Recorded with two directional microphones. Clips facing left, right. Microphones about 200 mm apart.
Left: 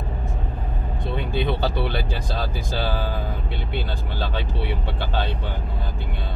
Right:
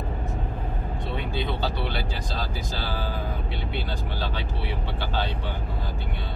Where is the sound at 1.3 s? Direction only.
55° left (ahead or behind).